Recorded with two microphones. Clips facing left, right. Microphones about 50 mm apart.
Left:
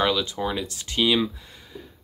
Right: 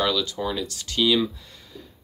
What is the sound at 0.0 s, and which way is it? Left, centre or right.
Speech, left.